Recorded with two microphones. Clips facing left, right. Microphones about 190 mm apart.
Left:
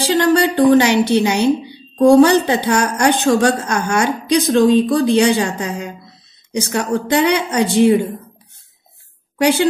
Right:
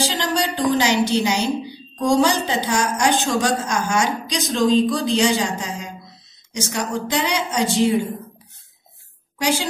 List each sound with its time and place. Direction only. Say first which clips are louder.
0.0 s a woman's voice: left 8 dB; 60° left (ahead or behind)
9.4 s a woman's voice: left 8 dB; 60° left (ahead or behind)